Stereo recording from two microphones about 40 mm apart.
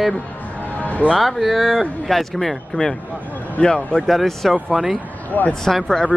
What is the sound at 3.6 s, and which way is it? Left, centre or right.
Speech, left.